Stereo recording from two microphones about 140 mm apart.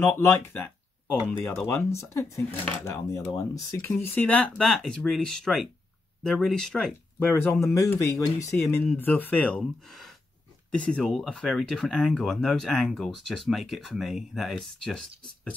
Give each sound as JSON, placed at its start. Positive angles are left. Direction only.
{"t": 1.4, "sound": "speech", "side_deg": 5}
{"t": 2.0, "sound": "speech", "side_deg": 20}
{"t": 3.9, "sound": "speech", "side_deg": 10}